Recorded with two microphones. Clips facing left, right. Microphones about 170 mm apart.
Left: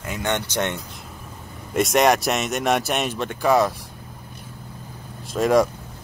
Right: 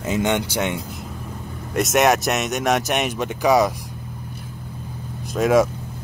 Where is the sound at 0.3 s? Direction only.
10° right (ahead or behind).